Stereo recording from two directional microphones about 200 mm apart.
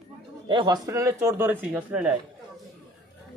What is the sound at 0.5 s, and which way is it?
A man's voice, 20° right (ahead or behind).